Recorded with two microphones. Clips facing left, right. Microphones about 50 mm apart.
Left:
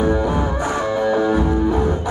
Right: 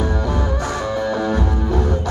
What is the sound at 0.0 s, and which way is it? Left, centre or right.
Music, centre.